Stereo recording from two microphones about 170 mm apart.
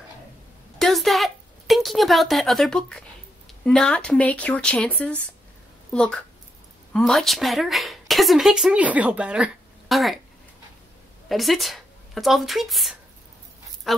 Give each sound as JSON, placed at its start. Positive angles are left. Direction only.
{"t": 0.7, "sound": "a sound", "side_deg": 0}
{"t": 3.6, "sound": "a woman's voice", "side_deg": 5}
{"t": 11.2, "sound": "speech", "side_deg": 0}